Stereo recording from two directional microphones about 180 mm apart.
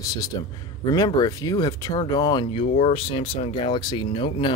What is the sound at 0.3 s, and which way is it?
Speech, 25° left (ahead or behind).